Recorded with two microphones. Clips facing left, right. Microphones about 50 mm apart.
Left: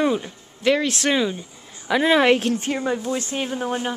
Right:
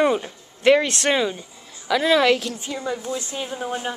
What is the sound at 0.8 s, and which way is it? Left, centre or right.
Speech, centre.